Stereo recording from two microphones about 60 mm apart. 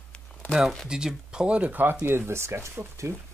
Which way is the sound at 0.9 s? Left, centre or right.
Centre.